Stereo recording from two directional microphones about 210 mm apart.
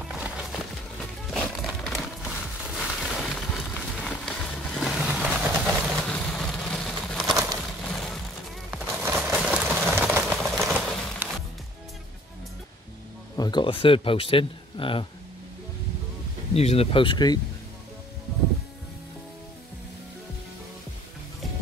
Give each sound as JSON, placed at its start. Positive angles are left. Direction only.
{"t": 0.0, "sound": "music", "side_deg": -5}
{"t": 1.3, "sound": "a sound", "side_deg": 0}
{"t": 7.9, "sound": "music", "side_deg": 0}
{"t": 8.6, "sound": "a sound", "side_deg": -5}
{"t": 13.4, "sound": "speech", "side_deg": 20}
{"t": 16.5, "sound": "speech", "side_deg": 30}